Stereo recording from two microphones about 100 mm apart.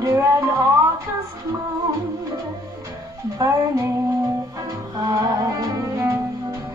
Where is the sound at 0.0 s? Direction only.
30° right (ahead or behind).